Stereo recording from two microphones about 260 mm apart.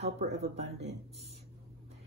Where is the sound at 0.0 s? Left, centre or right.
Right.